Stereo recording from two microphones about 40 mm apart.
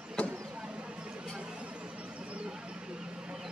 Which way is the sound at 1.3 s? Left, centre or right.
Right.